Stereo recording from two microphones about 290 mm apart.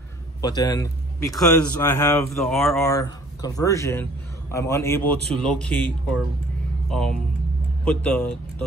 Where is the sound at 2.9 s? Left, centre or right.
Centre.